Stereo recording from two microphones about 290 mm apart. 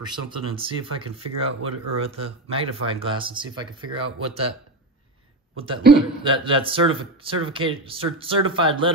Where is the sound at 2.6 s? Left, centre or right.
Centre.